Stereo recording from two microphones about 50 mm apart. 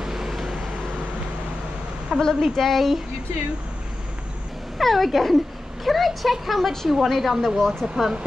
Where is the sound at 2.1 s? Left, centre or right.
Centre.